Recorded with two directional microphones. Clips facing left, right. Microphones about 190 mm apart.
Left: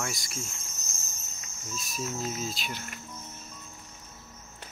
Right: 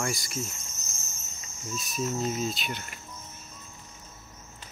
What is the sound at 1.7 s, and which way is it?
Speech, centre (ahead or behind).